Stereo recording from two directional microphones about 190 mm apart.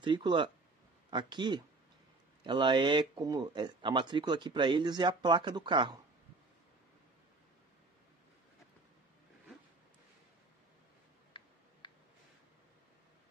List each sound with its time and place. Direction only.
0.0 s speech: 25° right (ahead or behind)
11.3 s tick-tock: 25° left (ahead or behind)
11.8 s a sound: 25° left (ahead or behind)